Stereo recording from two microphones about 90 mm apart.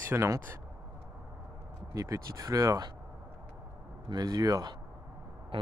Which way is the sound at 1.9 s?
40° right (ahead or behind).